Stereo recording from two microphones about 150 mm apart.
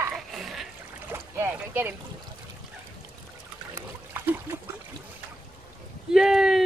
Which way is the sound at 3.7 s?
20° right (ahead or behind).